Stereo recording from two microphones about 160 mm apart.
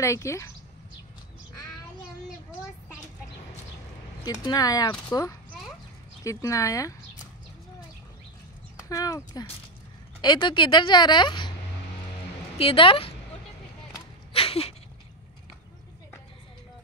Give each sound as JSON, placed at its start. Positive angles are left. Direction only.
{"t": 0.0, "sound": "speech", "side_deg": 20}
{"t": 4.2, "sound": "a woman's voice", "side_deg": 25}
{"t": 8.8, "sound": "a woman's voice", "side_deg": 20}
{"t": 12.5, "sound": "speech", "side_deg": 35}
{"t": 14.3, "sound": "a sound", "side_deg": 35}